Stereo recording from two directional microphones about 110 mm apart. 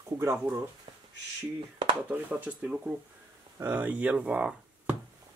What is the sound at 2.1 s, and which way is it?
Speech, 15° right (ahead or behind).